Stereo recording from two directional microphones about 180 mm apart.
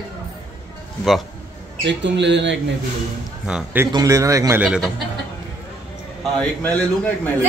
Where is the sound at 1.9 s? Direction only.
80° right.